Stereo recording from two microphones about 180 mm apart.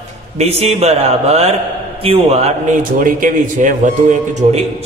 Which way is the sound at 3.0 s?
45° right (ahead or behind).